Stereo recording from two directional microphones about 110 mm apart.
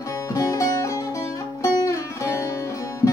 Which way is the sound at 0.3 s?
30° left (ahead or behind).